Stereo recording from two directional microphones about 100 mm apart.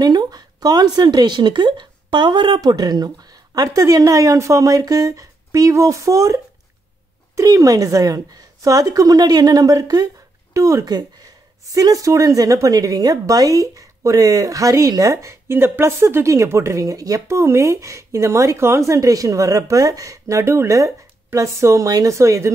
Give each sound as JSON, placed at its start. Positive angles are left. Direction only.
{"t": 0.0, "sound": "a woman's voice", "side_deg": -45}